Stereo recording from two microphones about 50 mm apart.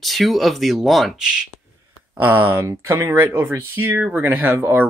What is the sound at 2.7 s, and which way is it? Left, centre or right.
Speech, right.